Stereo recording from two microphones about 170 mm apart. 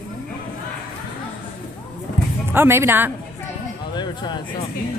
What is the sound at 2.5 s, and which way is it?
Speech, 15° right (ahead or behind).